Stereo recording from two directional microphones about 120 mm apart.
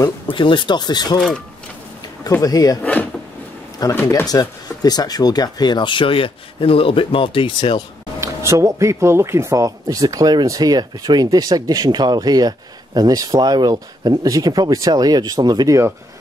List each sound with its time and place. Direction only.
0.3 s speech: 40° left (ahead or behind)
2.4 s speech: 30° left (ahead or behind)
2.8 s drawer open or close: 15° left (ahead or behind)
3.8 s speech: 35° left (ahead or behind)
8.2 s speech: 25° right (ahead or behind)